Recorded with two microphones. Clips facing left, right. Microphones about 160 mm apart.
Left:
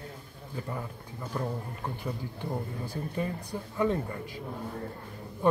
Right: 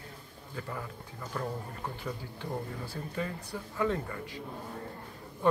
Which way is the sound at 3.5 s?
30° left (ahead or behind).